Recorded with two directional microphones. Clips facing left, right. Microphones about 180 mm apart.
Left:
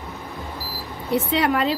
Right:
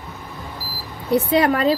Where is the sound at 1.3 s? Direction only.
40° right (ahead or behind).